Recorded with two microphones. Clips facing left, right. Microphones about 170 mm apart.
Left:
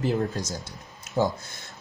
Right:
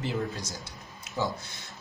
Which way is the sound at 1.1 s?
45° left (ahead or behind).